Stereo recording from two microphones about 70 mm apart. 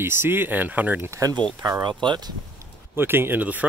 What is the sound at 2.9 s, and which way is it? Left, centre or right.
Speech, right.